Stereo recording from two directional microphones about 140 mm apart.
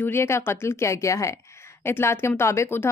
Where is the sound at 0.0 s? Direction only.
20° left (ahead or behind).